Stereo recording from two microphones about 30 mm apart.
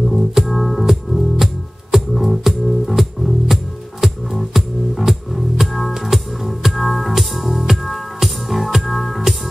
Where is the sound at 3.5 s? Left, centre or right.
Centre.